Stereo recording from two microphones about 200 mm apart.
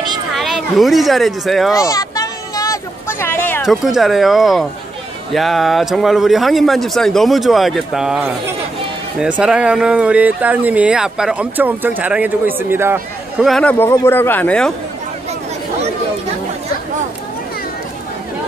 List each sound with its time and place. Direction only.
0.3 s speech: centre (ahead or behind)
1.8 s a sound: 15° left (ahead or behind)
3.6 s a man's voice: centre (ahead or behind)
13.5 s speech: 5° left (ahead or behind)